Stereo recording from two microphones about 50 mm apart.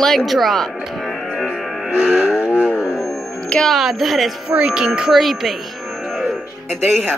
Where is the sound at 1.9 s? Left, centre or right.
Right.